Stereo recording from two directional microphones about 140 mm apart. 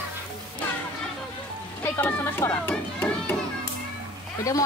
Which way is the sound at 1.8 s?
15° left (ahead or behind).